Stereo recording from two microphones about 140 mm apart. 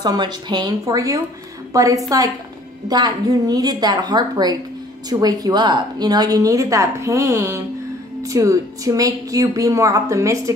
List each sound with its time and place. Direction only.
0.0 s a woman's voice: 30° right (ahead or behind)